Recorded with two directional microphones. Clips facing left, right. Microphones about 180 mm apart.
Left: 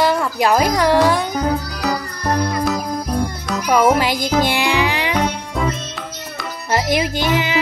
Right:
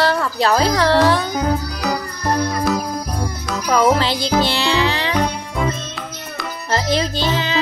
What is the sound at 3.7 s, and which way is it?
Music, 15° left (ahead or behind).